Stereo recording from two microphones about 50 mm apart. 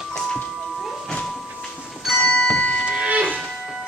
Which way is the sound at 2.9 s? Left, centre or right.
Right.